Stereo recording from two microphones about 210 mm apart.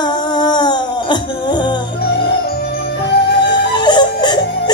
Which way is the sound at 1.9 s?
50° left (ahead or behind).